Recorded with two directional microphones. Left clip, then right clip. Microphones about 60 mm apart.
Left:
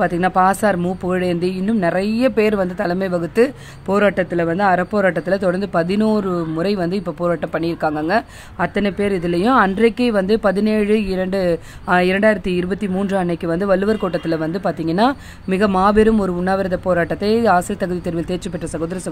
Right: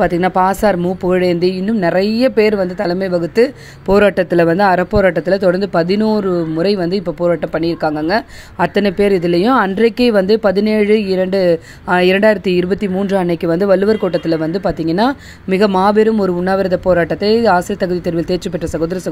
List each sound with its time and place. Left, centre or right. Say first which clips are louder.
0.0 s a woman's voice: right 2 dB; right
2.8 s speech: right 4 dB; centre
3.9 s speech: right 5 dB; right
4.9 s a woman's voice: right 4 dB; right
6.0 s speech: right 4 dB; right
8.5 s speech: right 6 dB; right
9.2 s a woman's voice: right 2 dB; right
12.1 s speech: right 4 dB; right
13.8 s speech: right 5 dB; right
15.8 s a woman's voice: even; right
16.1 s speech: right 3 dB; right